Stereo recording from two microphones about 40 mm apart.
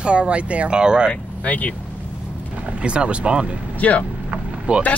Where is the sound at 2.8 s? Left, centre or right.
Right.